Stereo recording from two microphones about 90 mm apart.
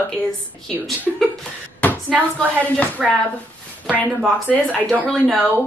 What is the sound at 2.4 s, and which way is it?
Speech, 15° left (ahead or behind).